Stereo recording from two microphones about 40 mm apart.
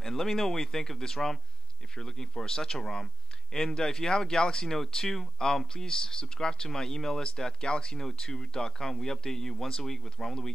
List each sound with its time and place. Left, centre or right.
0.0 s speech: centre